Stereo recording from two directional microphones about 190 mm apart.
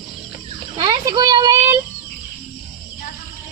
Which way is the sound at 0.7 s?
25° right (ahead or behind).